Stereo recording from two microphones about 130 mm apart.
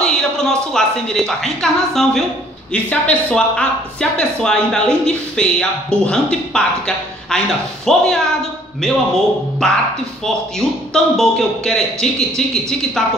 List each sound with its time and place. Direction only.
0.0 s a woman's voice: 5° left (ahead or behind)
10.9 s a man's voice: 5° left (ahead or behind)